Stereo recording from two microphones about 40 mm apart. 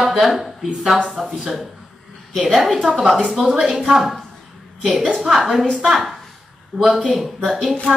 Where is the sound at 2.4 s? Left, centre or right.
Centre.